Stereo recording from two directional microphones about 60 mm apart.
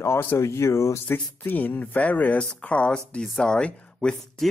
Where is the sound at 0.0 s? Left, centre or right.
Left.